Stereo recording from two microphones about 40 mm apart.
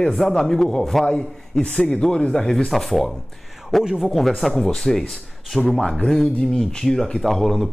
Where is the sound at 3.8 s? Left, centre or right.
Centre.